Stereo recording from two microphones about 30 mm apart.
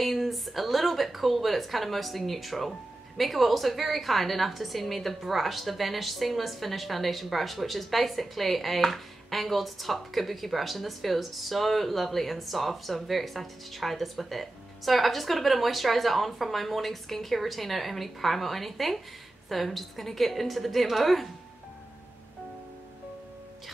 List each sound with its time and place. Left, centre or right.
0.0 s a woman's voice: centre